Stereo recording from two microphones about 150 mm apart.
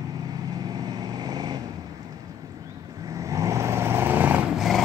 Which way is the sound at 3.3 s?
20° right (ahead or behind).